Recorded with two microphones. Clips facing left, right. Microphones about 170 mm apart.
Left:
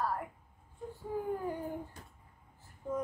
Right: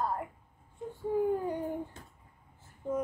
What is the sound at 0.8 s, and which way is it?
Whimper, 20° right (ahead or behind).